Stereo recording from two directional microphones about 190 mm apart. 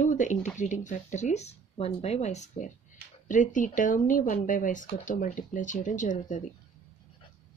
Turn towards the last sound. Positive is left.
turn(degrees=40)  # may be behind; listen again after turning